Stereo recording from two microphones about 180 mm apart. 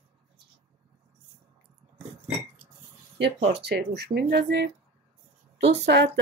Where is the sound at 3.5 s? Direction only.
70° right (ahead or behind).